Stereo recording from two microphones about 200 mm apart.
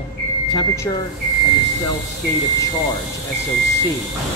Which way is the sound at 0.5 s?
15° left (ahead or behind).